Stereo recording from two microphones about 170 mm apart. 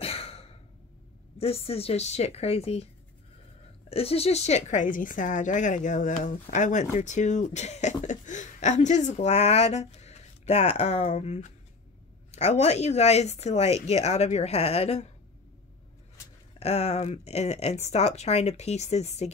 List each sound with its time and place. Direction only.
0.0 s sigh: 35° left (ahead or behind)
1.4 s speech: 35° left (ahead or behind)
3.9 s a woman's voice: 35° left (ahead or behind)
16.5 s speech: 40° left (ahead or behind)